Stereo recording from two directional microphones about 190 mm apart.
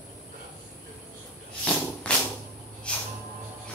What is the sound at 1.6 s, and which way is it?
Tambourine, 5° left (ahead or behind).